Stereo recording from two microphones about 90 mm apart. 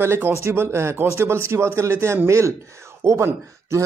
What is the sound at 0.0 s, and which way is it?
Speech, 25° right (ahead or behind).